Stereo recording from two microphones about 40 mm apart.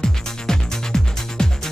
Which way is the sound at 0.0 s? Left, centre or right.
Centre.